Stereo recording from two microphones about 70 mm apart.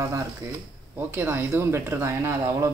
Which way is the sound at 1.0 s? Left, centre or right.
Right.